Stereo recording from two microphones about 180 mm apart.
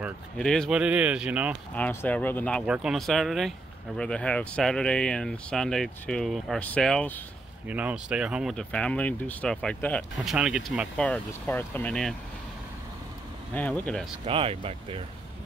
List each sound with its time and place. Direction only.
0.4 s speech: 5° left (ahead or behind)
1.8 s speech: 10° left (ahead or behind)
2.6 s speech: 5° right (ahead or behind)
7.6 s speech: 10° right (ahead or behind)
13.5 s speech: 10° left (ahead or behind)
14.2 s speech: 30° right (ahead or behind)